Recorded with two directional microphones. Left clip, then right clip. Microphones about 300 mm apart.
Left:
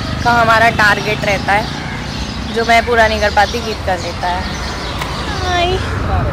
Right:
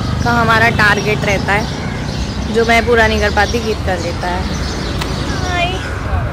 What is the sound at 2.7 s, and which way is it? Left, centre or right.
Speech, centre.